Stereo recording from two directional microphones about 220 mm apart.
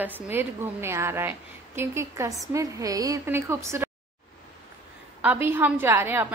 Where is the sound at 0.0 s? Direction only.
10° right (ahead or behind).